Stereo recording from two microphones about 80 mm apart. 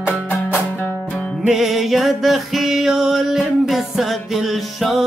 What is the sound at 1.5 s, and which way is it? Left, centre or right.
Music, centre.